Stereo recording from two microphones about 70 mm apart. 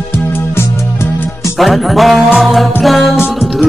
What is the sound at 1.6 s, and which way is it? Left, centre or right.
Music, centre.